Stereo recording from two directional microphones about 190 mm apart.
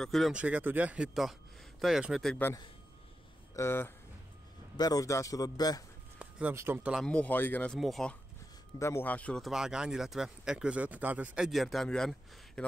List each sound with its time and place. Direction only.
0.0 s speech: centre (ahead or behind)
3.5 s speech: 15° left (ahead or behind)
6.1 s speech: 10° right (ahead or behind)
8.7 s speech: 15° left (ahead or behind)